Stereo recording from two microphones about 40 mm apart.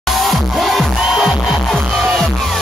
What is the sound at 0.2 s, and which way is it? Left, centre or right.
Music, centre.